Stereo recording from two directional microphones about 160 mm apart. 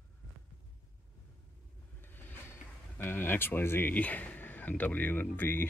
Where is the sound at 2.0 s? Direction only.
15° left (ahead or behind).